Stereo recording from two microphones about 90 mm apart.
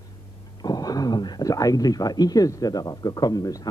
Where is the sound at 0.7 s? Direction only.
45° left (ahead or behind).